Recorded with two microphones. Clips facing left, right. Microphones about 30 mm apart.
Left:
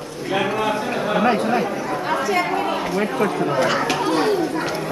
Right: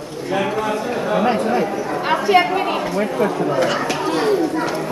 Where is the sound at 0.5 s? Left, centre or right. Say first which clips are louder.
Right 1 dB; centre.